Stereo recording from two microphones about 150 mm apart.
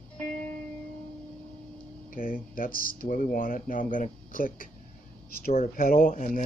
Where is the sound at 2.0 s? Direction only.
70° left (ahead or behind).